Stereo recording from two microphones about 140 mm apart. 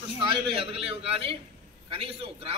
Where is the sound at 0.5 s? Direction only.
40° right (ahead or behind).